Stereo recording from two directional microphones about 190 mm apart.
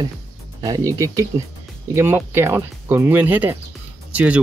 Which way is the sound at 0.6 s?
20° right (ahead or behind).